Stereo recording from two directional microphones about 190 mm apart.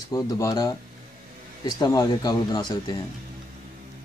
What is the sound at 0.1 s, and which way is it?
Speech, 15° left (ahead or behind).